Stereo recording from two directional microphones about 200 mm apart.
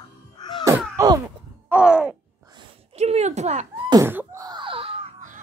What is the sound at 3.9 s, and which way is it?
Wail, 15° right (ahead or behind).